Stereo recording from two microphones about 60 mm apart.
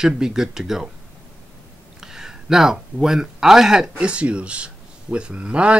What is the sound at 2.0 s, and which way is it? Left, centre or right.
Speech, centre.